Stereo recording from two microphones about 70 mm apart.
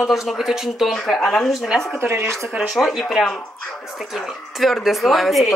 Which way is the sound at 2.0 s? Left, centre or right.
Right.